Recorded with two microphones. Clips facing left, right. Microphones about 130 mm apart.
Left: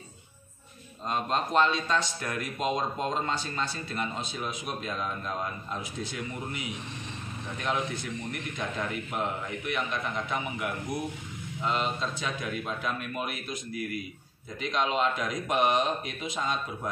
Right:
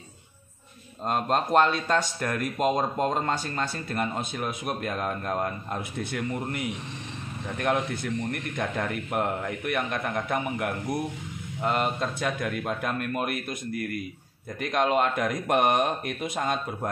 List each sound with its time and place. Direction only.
1.0 s speech: 50° right (ahead or behind)